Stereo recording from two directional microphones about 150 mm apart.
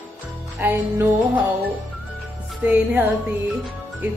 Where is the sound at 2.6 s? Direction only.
10° right (ahead or behind).